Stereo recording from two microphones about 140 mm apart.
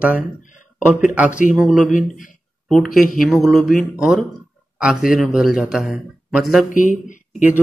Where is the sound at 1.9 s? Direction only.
65° left (ahead or behind).